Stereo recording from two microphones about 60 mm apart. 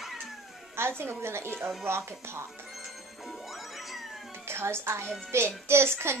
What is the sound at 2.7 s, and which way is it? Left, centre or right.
Music, centre.